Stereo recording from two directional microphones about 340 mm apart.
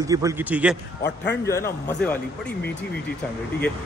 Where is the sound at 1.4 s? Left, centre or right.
Centre.